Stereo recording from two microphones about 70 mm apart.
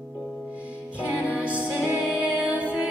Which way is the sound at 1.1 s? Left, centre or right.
Centre.